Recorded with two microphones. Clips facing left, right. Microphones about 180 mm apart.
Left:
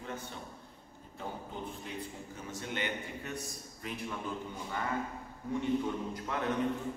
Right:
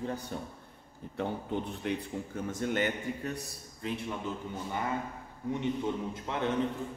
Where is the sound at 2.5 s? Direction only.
50° right (ahead or behind).